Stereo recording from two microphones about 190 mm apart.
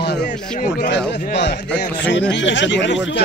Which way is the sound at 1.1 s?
65° left (ahead or behind).